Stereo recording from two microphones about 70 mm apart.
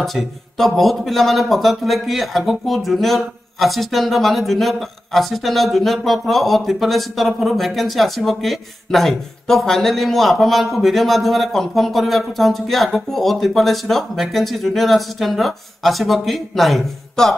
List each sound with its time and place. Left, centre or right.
0.0 s a man's voice: centre